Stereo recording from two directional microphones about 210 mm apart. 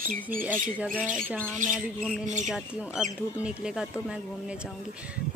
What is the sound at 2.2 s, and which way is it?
Speech, 35° right (ahead or behind).